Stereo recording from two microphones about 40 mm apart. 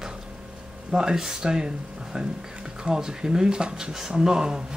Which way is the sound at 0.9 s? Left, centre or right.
Centre.